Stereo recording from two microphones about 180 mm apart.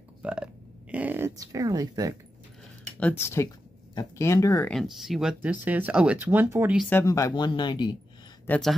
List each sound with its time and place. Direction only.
0.2 s a sound: 5° right (ahead or behind)
3.0 s speech: 10° left (ahead or behind)
4.6 s speech: centre (ahead or behind)
6.9 s speech: 15° left (ahead or behind)
8.5 s speech: 5° left (ahead or behind)